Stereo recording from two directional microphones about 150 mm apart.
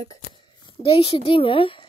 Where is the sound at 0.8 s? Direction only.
40° left (ahead or behind).